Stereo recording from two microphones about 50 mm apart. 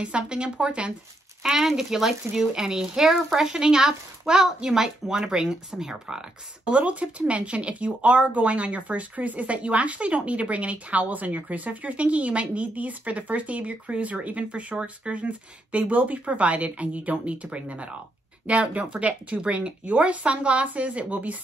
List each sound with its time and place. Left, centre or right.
0.0 s speech: right
1.4 s speech: centre
6.6 s speech: right